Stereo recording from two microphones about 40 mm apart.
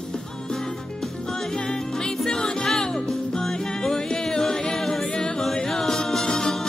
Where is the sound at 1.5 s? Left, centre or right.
Centre.